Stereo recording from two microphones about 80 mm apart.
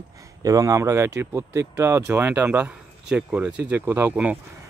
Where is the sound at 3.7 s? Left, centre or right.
Right.